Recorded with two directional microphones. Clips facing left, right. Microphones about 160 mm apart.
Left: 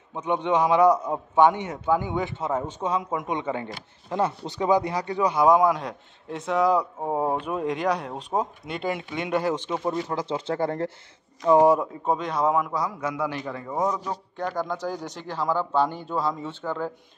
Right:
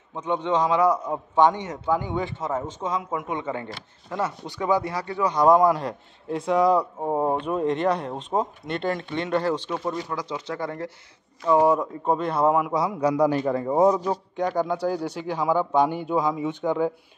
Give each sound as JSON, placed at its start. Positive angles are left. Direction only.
{"t": 0.1, "sound": "a man's voice", "side_deg": 15}
{"t": 5.3, "sound": "a man's voice", "side_deg": 0}
{"t": 11.4, "sound": "a man's voice", "side_deg": 15}
{"t": 12.7, "sound": "a man's voice", "side_deg": -30}
{"t": 14.1, "sound": "speech", "side_deg": -10}